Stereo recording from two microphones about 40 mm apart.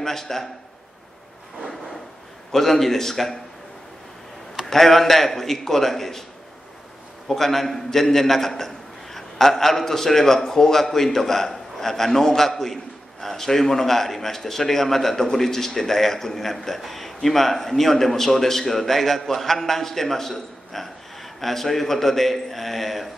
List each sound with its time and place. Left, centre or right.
0.0 s a man's voice: centre
2.5 s a man's voice: centre
4.6 s a man's voice: centre
7.2 s a man's voice: centre